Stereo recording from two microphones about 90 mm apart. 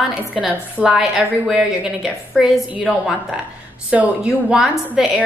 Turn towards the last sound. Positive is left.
turn(degrees=-10)  # may be behind; listen again after turning